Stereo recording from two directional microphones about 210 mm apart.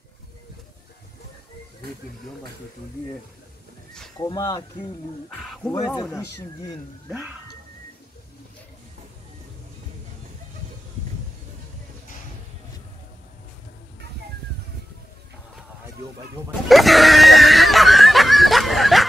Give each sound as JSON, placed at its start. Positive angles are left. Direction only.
{"t": 4.2, "sound": "speech", "side_deg": 20}
{"t": 7.1, "sound": "speech", "side_deg": -5}
{"t": 16.6, "sound": "a sound", "side_deg": 0}